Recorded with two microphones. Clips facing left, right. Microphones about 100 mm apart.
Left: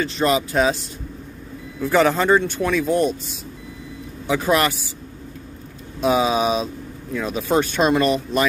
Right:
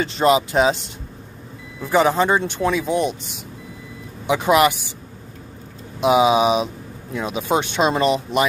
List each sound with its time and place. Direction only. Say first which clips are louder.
0.0 s speech: right 3 dB; 25° right (ahead or behind)
1.8 s speech: even; 15° right (ahead or behind)
4.3 s speech: right 3 dB; 15° right (ahead or behind)
5.9 s speech: right 3 dB; 15° right (ahead or behind)